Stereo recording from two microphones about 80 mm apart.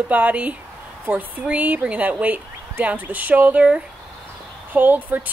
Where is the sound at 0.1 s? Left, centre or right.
Centre.